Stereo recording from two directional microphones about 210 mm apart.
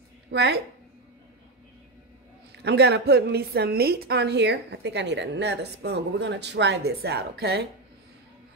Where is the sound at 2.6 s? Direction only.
50° right (ahead or behind).